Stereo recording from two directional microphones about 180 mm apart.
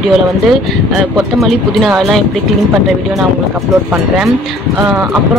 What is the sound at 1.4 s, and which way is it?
Speech, centre (ahead or behind).